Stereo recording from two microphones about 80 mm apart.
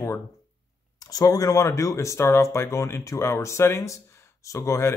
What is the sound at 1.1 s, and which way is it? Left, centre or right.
Speech, left.